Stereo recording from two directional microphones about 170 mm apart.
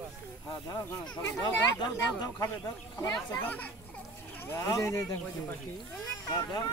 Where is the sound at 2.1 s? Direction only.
20° left (ahead or behind).